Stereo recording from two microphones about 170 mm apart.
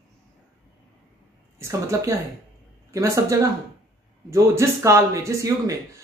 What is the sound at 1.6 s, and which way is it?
Speech, 15° right (ahead or behind).